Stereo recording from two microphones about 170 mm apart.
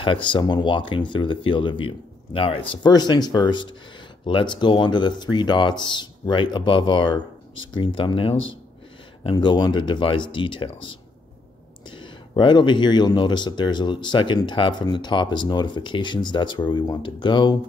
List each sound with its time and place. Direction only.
0.0 s speech: 30° left (ahead or behind)